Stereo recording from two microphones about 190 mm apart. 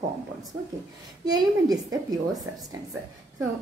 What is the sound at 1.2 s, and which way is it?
Speech, 20° right (ahead or behind).